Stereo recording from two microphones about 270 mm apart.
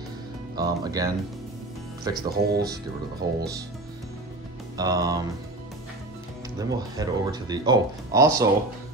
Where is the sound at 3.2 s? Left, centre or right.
Right.